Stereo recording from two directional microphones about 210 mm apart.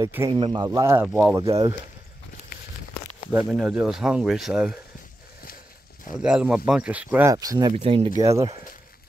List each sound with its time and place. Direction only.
0.0 s speech: 15° right (ahead or behind)
1.0 s speech: centre (ahead or behind)
1.3 s speech: 15° right (ahead or behind)
3.3 s speech: 5° right (ahead or behind)
6.1 s speech: 5° right (ahead or behind)